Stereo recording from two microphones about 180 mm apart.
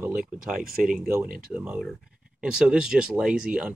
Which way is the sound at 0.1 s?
50° right (ahead or behind).